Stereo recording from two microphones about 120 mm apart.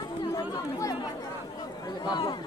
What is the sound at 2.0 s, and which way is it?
Speech, 35° left (ahead or behind).